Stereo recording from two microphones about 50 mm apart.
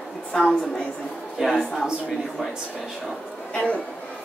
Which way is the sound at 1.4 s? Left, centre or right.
Centre.